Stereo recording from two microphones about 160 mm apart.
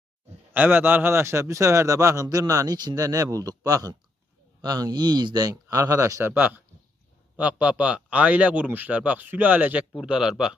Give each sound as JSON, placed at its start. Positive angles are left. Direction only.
{"t": 0.5, "sound": "a man's voice", "side_deg": -10}